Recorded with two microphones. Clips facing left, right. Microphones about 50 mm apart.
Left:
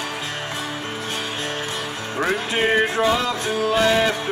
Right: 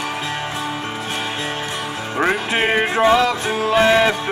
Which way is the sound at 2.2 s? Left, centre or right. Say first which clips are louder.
Right 3 dB; right.